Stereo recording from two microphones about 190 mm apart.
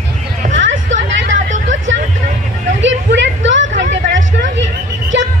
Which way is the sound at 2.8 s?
75° right (ahead or behind).